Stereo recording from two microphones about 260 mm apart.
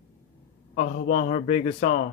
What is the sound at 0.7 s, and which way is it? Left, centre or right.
Speech, left.